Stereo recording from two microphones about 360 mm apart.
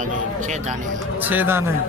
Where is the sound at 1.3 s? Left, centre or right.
Centre.